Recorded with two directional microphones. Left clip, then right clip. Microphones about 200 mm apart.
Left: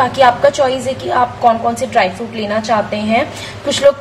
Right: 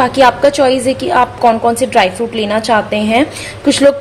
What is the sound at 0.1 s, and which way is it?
A woman's voice, 40° right (ahead or behind).